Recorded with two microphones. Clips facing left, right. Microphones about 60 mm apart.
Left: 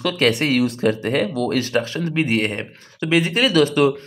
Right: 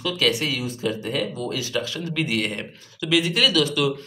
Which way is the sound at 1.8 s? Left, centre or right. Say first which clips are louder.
Left 5 dB; left.